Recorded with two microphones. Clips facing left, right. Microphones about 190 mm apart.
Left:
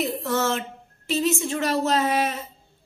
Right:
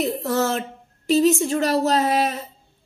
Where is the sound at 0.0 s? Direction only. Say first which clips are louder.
Right 3 dB; 40° right (ahead or behind).